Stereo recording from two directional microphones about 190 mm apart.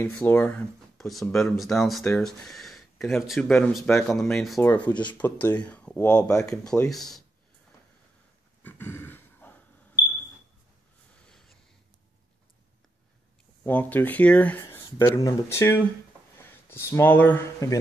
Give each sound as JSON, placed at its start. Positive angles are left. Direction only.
{"t": 0.0, "sound": "speech", "side_deg": 10}
{"t": 4.6, "sound": "speech", "side_deg": 15}
{"t": 6.3, "sound": "speech", "side_deg": 15}
{"t": 6.6, "sound": "speech", "side_deg": 5}
{"t": 8.6, "sound": "a sound", "side_deg": 10}
{"t": 11.2, "sound": "sniff", "side_deg": 0}
{"t": 13.7, "sound": "speech", "side_deg": 10}